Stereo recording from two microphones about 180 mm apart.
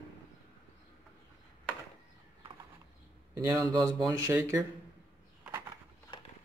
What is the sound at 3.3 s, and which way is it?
A man's voice, 20° right (ahead or behind).